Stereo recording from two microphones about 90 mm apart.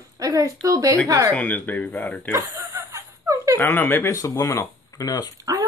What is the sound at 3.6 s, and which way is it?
Speech, 25° left (ahead or behind).